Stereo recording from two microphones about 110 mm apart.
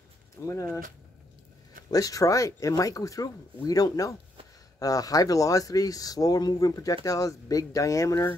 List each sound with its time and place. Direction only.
0.5 s speech: 30° left (ahead or behind)
1.9 s speech: 35° left (ahead or behind)